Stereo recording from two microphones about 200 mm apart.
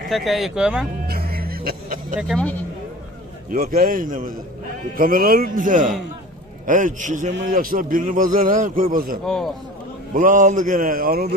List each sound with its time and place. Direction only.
0.1 s speech: centre (ahead or behind)
1.0 s music: 50° right (ahead or behind)
2.1 s speech: centre (ahead or behind)
3.4 s a man's voice: 45° right (ahead or behind)
9.2 s speech: centre (ahead or behind)
10.1 s a man's voice: 40° right (ahead or behind)